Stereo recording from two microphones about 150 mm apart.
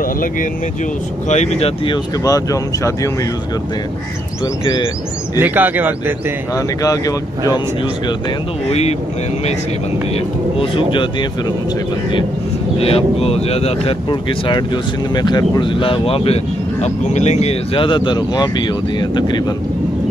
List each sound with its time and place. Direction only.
1.3 s speech: 50° left (ahead or behind)
1.9 s speech: 25° left (ahead or behind)
5.4 s speech: 10° right (ahead or behind)
6.5 s speech: 20° left (ahead or behind)
8.6 s speech: 45° left (ahead or behind)
10.6 s speech: 35° left (ahead or behind)
12.7 s speech: 40° left (ahead or behind)
15.1 s speech: 30° left (ahead or behind)
16.8 s speech: 50° left (ahead or behind); by 19.4 s 30° left (ahead or behind)